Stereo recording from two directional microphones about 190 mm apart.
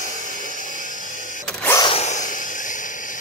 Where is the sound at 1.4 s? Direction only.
5° left (ahead or behind).